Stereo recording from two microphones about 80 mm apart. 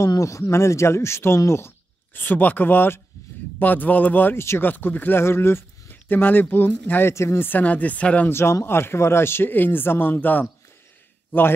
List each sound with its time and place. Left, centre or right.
0.0 s speech: left
2.1 s speech: left
8.3 s speech: left